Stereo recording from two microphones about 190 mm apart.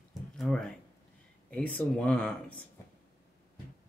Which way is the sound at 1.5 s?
5° left (ahead or behind).